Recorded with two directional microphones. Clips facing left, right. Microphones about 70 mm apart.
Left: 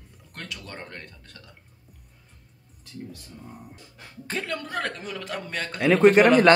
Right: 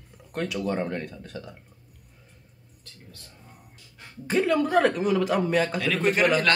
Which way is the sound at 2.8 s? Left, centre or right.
Centre.